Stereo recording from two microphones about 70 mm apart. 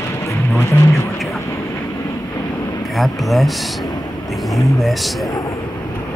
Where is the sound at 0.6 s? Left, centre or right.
Left.